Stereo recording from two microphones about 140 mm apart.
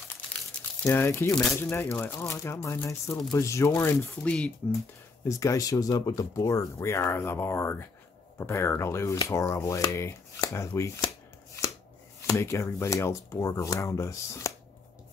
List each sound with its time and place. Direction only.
0.8 s speech: 15° left (ahead or behind)
5.3 s speech: 25° left (ahead or behind)
12.2 s speech: 20° left (ahead or behind)